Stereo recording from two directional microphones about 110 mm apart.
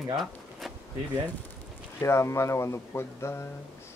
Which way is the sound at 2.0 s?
25° left (ahead or behind).